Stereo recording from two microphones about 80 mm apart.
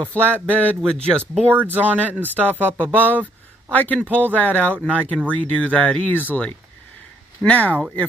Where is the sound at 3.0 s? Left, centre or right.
Centre.